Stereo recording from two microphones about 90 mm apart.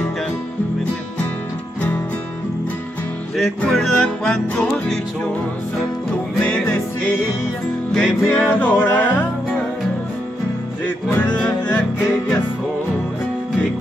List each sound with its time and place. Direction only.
3.3 s music: centre (ahead or behind)
7.9 s music: 10° left (ahead or behind)
11.1 s music: 20° left (ahead or behind)